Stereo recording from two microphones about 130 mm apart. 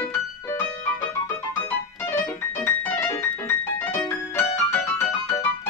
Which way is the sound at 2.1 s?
15° left (ahead or behind).